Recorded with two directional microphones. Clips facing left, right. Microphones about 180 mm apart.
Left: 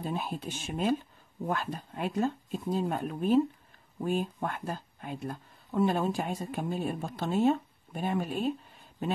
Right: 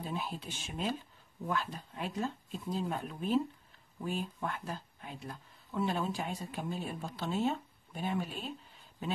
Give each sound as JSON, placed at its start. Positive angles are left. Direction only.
{"t": 0.0, "sound": "speech", "side_deg": 50}